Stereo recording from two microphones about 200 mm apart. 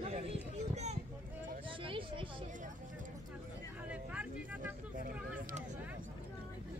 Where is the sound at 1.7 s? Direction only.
25° right (ahead or behind).